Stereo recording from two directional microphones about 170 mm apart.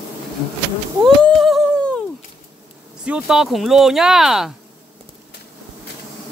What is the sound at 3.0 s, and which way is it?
Speech, 5° right (ahead or behind).